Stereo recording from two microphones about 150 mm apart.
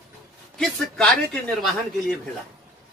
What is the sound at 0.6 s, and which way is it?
Speech, 5° left (ahead or behind).